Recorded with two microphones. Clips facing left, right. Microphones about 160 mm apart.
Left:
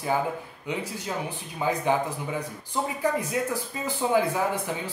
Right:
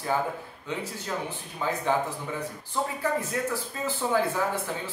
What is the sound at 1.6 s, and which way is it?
Speech, 15° left (ahead or behind).